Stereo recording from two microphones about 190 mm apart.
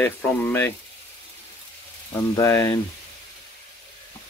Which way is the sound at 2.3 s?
15° left (ahead or behind).